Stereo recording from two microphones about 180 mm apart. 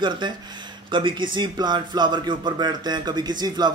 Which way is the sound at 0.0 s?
25° right (ahead or behind).